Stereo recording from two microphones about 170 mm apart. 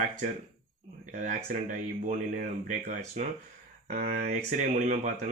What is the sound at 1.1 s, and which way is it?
Speech, 50° right (ahead or behind).